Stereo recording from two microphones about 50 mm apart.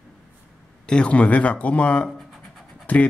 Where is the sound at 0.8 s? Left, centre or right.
Left.